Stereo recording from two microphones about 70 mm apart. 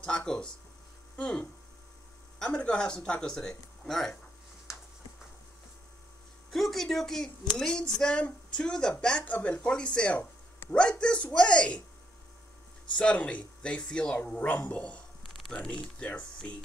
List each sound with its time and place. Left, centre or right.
0.0 s a woman's voice: centre
6.5 s a woman's voice: centre
12.9 s a woman's voice: centre
15.2 s a sound: centre
15.8 s a woman's voice: centre